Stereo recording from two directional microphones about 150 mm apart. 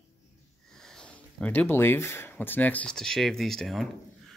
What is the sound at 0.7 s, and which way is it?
Speech, 5° left (ahead or behind).